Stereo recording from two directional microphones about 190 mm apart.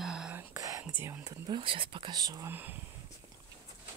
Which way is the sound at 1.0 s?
15° right (ahead or behind).